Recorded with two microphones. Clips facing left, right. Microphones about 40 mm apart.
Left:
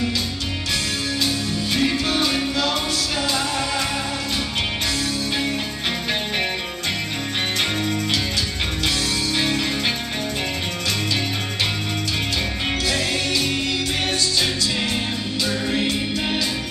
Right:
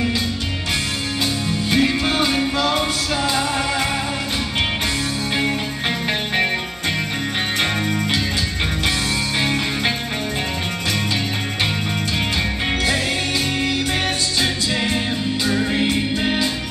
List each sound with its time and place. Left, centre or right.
1.2 s music: right
9.4 s music: centre
15.4 s music: centre